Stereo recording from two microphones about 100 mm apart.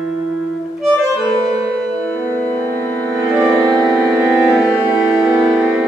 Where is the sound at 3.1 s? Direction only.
25° right (ahead or behind).